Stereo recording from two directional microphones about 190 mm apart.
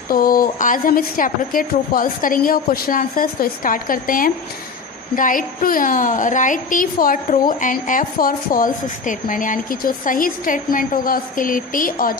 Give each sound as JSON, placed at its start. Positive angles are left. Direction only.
{"t": 0.1, "sound": "a woman's voice", "side_deg": 50}